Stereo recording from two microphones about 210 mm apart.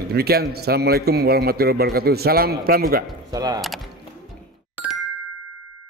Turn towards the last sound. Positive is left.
turn(degrees=-5)  # may be behind; listen again after turning